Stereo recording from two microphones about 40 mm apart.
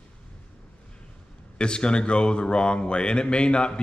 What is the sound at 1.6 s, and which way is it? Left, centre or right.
Speech, left.